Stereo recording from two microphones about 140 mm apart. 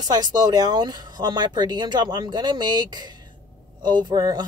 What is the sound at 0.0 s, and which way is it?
Speech, 30° right (ahead or behind).